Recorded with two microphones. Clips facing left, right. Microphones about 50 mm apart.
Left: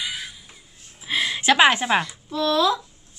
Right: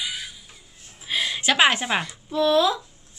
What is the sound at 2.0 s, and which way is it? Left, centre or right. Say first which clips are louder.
Speech: right 2 dB; centre.